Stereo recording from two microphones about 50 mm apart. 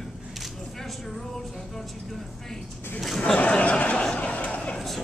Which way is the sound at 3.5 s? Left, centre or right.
Left.